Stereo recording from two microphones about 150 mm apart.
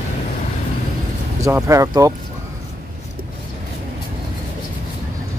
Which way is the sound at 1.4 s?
20° right (ahead or behind).